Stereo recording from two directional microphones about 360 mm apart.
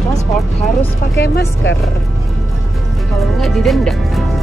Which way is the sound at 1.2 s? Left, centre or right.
Left.